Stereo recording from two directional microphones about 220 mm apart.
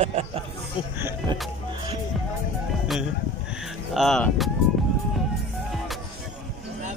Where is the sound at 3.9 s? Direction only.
Centre (ahead or behind).